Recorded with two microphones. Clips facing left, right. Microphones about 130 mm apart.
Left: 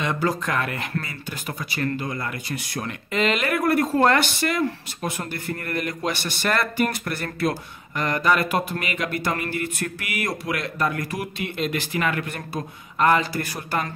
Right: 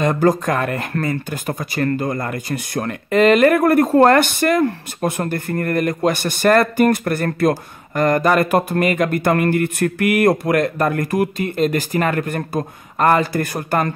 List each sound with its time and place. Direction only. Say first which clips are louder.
0.0 s speech: right 8 dB; 45° right (ahead or behind)